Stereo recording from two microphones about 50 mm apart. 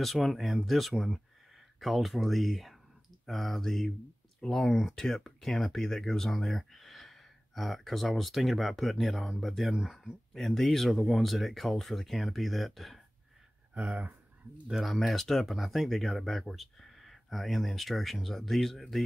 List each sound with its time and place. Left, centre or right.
0.0 s speech: centre
10.3 s speech: centre
13.7 s speech: right
14.7 s speech: centre
15.0 s speech: centre